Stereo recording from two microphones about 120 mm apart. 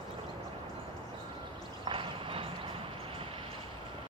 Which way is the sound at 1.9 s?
45° right (ahead or behind).